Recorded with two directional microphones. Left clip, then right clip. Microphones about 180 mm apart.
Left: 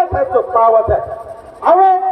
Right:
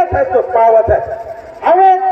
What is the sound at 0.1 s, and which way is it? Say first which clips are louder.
A man's voice: right 2 dB; 40° right (ahead or behind).